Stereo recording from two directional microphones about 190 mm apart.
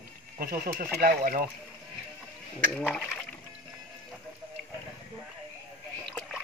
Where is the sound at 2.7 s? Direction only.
5° left (ahead or behind).